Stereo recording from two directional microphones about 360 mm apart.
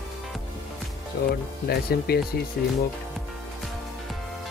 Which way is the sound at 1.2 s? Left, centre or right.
Left.